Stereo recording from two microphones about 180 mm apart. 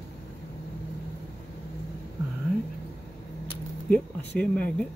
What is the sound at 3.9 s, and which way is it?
Speech, 10° left (ahead or behind).